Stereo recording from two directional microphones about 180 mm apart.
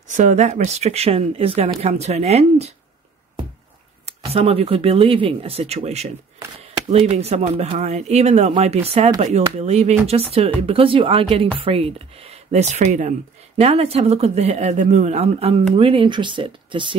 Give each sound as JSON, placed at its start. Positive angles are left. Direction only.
{"t": 0.1, "sound": "speech", "side_deg": -40}
{"t": 4.0, "sound": "speech", "side_deg": -35}